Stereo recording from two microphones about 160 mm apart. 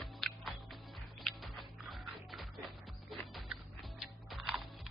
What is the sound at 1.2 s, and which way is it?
Music, centre (ahead or behind).